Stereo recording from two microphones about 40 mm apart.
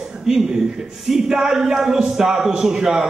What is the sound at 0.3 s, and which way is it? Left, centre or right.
A man's voice, centre.